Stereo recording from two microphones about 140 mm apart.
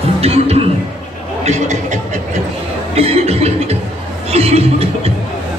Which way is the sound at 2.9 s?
45° right (ahead or behind).